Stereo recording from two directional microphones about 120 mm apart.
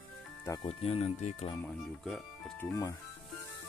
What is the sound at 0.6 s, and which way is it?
Speech, 55° left (ahead or behind).